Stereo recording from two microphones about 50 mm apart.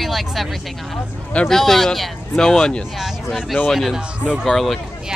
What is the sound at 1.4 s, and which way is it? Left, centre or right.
Speech, centre.